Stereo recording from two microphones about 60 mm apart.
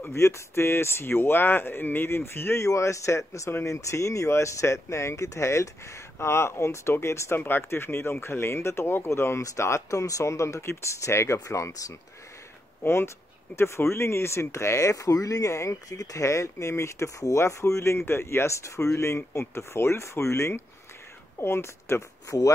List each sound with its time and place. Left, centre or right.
0.1 s speech: left
2.7 s speech: left
11.3 s speech: left
12.8 s speech: left